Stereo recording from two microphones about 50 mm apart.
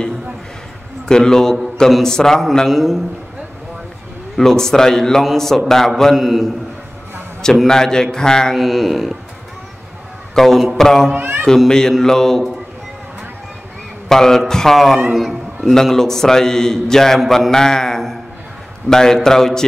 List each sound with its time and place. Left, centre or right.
1.0 s a man's voice: centre
2.7 s speech: centre
4.4 s a man's voice: centre
6.1 s speech: centre
7.6 s a man's voice: centre
8.5 s speech: centre
10.3 s a man's voice: centre
11.1 s speech: right
11.4 s a man's voice: centre
14.0 s a man's voice: centre